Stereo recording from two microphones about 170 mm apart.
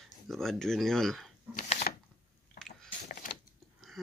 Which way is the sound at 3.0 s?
45° left (ahead or behind).